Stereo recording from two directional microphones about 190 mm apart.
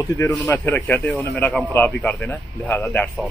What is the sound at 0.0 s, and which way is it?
Speech, 20° left (ahead or behind).